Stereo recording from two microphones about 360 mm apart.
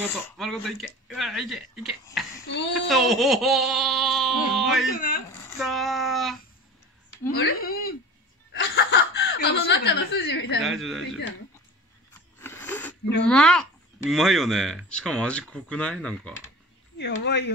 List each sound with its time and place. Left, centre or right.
0.4 s speech: centre
2.3 s a child's voice: left
2.9 s speech: centre
4.9 s speech: left
5.3 s speech: centre
7.3 s speech: left
10.6 s speech: centre
12.4 s a sound: centre
13.3 s speech: centre
17.0 s speech: left